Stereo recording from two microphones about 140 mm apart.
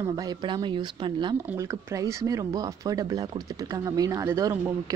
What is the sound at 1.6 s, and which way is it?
Speech, 20° right (ahead or behind).